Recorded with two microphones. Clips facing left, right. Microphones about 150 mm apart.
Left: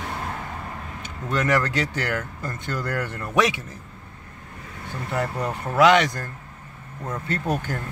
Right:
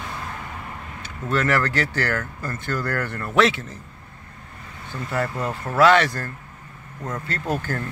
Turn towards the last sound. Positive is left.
turn(degrees=15)  # may be behind; listen again after turning